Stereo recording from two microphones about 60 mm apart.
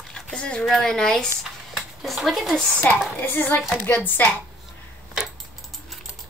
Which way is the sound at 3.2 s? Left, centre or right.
Left.